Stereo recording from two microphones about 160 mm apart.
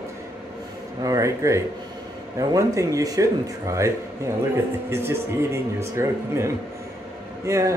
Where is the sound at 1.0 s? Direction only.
20° right (ahead or behind).